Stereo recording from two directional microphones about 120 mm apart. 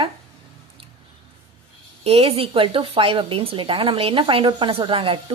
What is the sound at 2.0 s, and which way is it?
A woman's voice, 55° right (ahead or behind).